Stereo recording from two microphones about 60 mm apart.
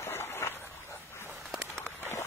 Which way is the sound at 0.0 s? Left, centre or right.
Left.